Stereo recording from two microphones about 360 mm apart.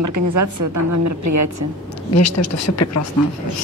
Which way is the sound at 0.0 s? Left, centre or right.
Right.